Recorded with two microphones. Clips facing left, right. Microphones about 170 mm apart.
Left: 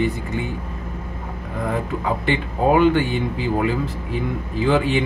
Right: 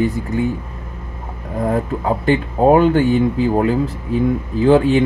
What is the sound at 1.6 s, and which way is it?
Speech, 35° right (ahead or behind).